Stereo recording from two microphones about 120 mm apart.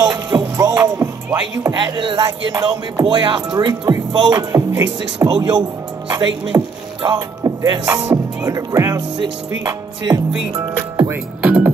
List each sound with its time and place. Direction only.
0.3 s music: 35° right (ahead or behind)
3.1 s speech: 45° right (ahead or behind)
3.5 s music: 35° right (ahead or behind)
8.5 s speech: 30° right (ahead or behind)
9.2 s music: 35° right (ahead or behind)
11.1 s music: 10° right (ahead or behind)